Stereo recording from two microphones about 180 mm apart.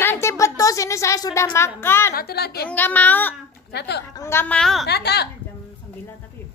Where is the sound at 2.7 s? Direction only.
10° left (ahead or behind).